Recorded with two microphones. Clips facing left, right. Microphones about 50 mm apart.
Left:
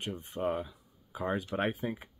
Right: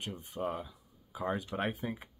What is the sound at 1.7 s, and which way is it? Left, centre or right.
Speech, centre.